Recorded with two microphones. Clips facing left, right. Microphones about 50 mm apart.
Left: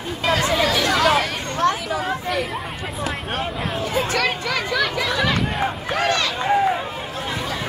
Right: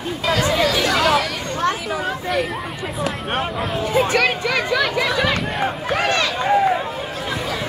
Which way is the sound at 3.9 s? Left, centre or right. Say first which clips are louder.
Right 5 dB; right.